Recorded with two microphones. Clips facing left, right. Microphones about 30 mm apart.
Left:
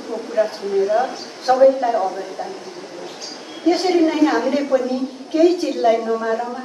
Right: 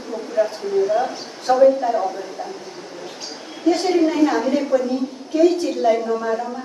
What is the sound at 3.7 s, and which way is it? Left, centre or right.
A woman's voice, left.